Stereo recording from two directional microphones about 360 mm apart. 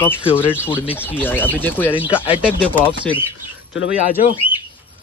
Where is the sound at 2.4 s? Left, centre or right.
Centre.